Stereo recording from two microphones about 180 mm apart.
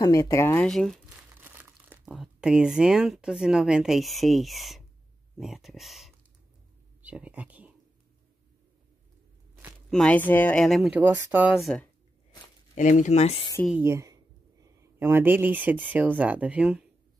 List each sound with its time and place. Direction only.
0.0 s speech: 20° left (ahead or behind)
0.7 s speech: centre (ahead or behind)
1.4 s speech: 10° right (ahead or behind)
9.8 s speech: 5° left (ahead or behind)
12.7 s speech: 45° left (ahead or behind)
13.7 s speech: 10° right (ahead or behind)